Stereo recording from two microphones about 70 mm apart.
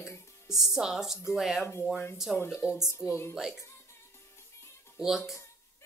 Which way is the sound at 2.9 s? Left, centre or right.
Left.